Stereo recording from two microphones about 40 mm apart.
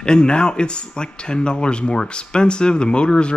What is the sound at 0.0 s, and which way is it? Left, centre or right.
Speech, left.